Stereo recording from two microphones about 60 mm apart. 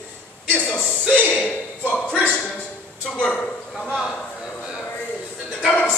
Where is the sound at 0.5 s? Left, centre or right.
Left.